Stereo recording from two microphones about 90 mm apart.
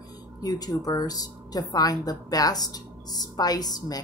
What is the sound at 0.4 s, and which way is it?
A woman's voice, 45° left (ahead or behind).